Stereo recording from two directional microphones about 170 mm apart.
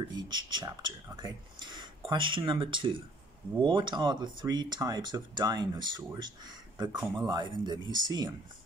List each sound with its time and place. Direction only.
0.1 s speech: 25° right (ahead or behind)